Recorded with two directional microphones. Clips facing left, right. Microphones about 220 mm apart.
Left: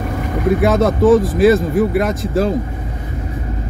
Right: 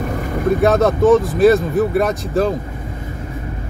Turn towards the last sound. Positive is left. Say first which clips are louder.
# even
turn(degrees=0)  # may be behind; listen again after turning